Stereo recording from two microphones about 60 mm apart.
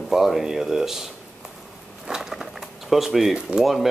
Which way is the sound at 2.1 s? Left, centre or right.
Centre.